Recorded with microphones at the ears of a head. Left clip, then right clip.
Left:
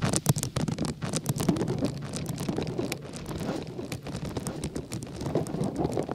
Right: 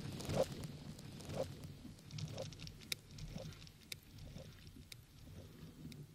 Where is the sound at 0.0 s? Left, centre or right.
Left.